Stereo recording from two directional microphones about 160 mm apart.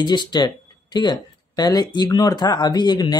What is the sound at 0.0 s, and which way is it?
Speech, 30° left (ahead or behind).